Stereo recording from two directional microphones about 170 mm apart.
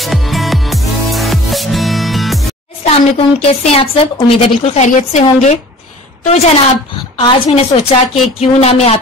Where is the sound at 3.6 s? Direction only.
35° left (ahead or behind).